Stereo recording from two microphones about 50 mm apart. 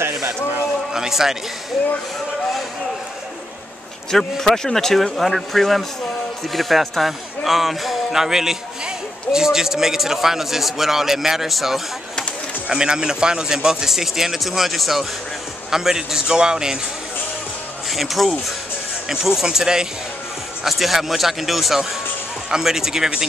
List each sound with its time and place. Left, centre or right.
0.0 s a sound: right
0.9 s speech: centre
4.1 s speech: centre
12.6 s speech: centre
17.8 s speech: centre